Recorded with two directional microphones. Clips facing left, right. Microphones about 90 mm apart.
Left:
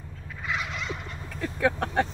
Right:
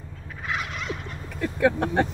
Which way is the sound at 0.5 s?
Centre (ahead or behind).